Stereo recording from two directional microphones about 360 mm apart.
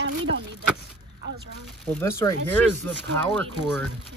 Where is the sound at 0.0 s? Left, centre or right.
Right.